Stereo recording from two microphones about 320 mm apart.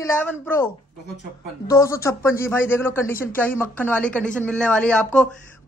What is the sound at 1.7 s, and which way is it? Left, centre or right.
A woman's voice, centre.